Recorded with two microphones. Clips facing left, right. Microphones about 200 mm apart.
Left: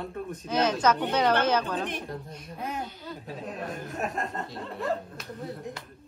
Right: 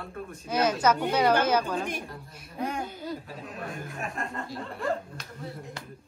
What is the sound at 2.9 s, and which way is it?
Speech, 50° right (ahead or behind).